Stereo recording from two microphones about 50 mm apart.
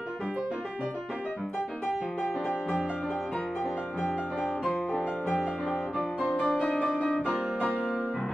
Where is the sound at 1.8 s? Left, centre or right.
Left.